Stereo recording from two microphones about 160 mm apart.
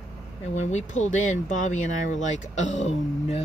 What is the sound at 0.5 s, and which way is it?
Speech, 45° left (ahead or behind).